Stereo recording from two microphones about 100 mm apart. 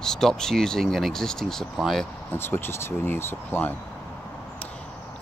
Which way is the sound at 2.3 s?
20° left (ahead or behind).